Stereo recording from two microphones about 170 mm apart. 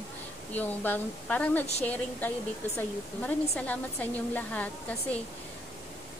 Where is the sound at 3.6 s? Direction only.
10° left (ahead or behind).